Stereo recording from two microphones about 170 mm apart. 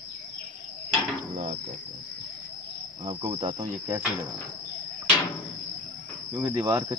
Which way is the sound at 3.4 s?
25° right (ahead or behind).